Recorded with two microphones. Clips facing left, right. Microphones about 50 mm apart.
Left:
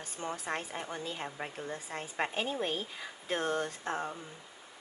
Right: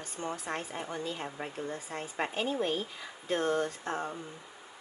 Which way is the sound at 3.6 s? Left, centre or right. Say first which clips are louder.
Right 1 dB; centre.